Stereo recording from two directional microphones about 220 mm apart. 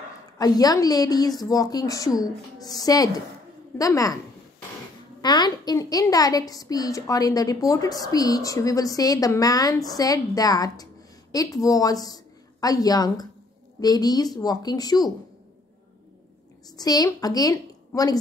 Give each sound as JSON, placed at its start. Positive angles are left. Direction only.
{"t": 0.4, "sound": "a woman's voice", "side_deg": 15}
{"t": 5.2, "sound": "a woman's voice", "side_deg": 20}
{"t": 16.7, "sound": "a woman's voice", "side_deg": 15}